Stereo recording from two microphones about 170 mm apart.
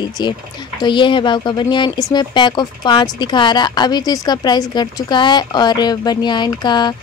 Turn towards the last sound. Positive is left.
turn(degrees=25)  # may be behind; listen again after turning